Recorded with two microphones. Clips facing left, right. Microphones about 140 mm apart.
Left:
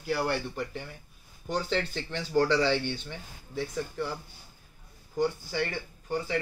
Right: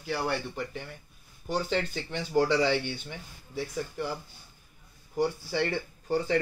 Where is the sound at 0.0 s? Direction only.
5° left (ahead or behind).